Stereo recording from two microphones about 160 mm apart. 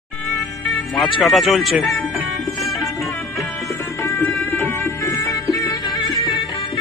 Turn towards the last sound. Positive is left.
turn(degrees=25)  # may be behind; listen again after turning